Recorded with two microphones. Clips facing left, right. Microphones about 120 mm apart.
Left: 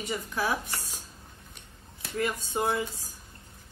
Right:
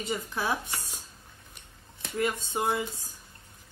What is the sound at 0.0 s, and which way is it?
Speech, 25° right (ahead or behind).